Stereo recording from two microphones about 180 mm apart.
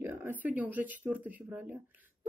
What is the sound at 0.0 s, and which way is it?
A woman's voice, 10° right (ahead or behind).